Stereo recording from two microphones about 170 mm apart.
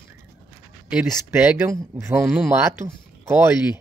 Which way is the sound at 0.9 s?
5° right (ahead or behind).